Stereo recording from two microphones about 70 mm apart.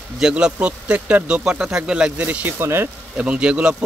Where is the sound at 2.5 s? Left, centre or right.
Right.